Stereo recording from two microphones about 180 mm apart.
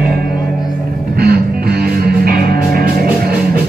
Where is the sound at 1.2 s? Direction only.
60° right (ahead or behind).